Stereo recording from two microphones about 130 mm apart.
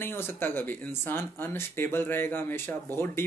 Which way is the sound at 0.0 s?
15° left (ahead or behind).